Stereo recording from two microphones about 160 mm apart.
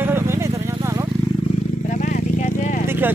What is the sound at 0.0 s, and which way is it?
Vehicle, 15° right (ahead or behind).